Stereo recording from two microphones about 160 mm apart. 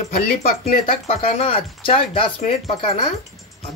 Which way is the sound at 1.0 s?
40° left (ahead or behind).